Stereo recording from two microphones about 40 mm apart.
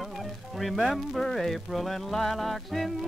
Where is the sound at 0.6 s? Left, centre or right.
Centre.